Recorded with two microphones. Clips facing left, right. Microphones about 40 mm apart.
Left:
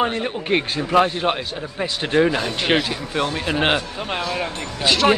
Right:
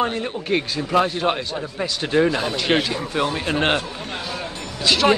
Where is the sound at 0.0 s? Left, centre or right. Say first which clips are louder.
Left 1 dB; centre.